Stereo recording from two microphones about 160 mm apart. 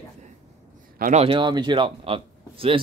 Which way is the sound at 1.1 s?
35° right (ahead or behind).